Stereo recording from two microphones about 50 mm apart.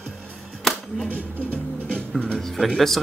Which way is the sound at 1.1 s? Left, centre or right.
Right.